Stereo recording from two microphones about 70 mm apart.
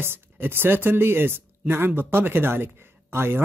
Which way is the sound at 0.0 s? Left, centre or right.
Right.